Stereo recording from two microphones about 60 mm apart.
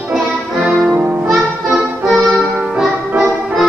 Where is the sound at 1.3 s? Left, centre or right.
Centre.